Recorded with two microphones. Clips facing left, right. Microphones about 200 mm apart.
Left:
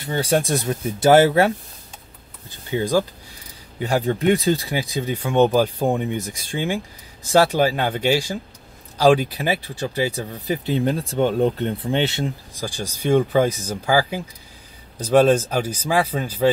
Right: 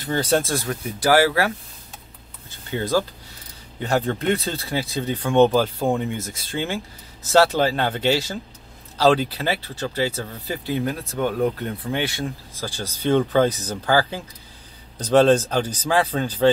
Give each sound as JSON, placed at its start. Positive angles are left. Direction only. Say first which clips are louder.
{"t": 0.0, "sound": "speech", "louder": "even", "side_deg": 10}
{"t": 2.7, "sound": "speech", "louder": "left 2 dB", "side_deg": 15}